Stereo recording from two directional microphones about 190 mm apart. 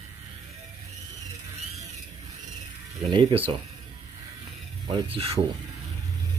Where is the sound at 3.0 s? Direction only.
25° right (ahead or behind).